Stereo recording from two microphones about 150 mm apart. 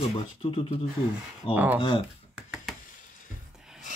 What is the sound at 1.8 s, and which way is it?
Speech, 35° left (ahead or behind).